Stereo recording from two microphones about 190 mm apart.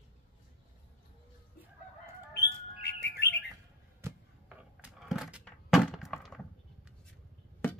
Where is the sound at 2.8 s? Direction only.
60° left (ahead or behind).